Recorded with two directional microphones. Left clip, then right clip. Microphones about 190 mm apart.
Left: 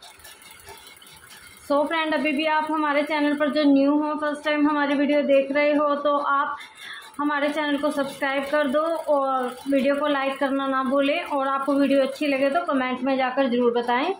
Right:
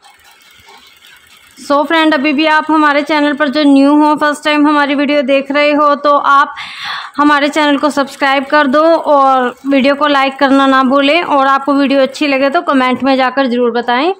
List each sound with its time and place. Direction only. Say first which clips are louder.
1.7 s a woman's voice: right 12 dB; 65° right (ahead or behind)